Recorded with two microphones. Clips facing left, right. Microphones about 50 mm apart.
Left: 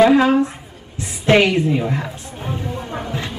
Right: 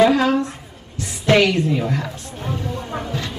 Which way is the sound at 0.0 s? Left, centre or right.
Centre.